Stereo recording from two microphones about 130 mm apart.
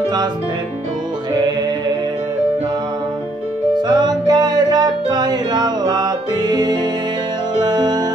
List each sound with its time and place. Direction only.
3.7 s music: 35° right (ahead or behind)